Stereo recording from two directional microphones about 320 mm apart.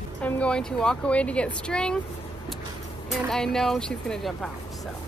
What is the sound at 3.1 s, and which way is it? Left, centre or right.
Speech, centre.